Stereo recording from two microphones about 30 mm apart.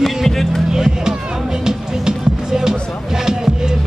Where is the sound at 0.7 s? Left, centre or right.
Centre.